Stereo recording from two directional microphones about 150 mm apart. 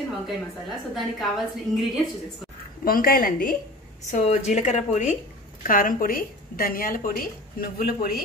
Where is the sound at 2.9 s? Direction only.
75° left (ahead or behind).